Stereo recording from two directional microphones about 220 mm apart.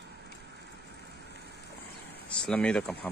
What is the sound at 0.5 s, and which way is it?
Vehicle, 50° right (ahead or behind).